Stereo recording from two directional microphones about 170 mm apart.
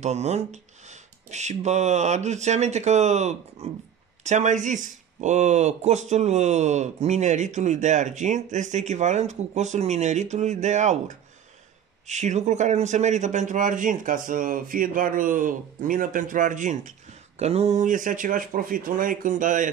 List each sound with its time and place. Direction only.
0.0 s speech: 40° right (ahead or behind)